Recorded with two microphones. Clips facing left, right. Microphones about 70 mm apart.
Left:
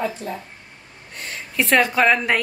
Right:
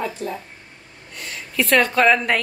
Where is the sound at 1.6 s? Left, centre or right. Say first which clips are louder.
Even; left.